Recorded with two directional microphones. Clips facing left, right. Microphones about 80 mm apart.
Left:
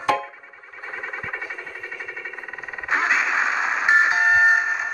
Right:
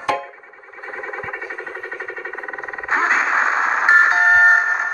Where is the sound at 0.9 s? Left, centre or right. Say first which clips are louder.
Right 3 dB; right.